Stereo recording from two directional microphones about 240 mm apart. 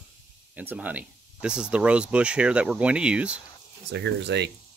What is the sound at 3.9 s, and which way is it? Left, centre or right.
Speech, right.